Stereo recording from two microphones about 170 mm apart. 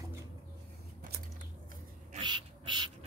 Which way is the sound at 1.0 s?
70° right (ahead or behind).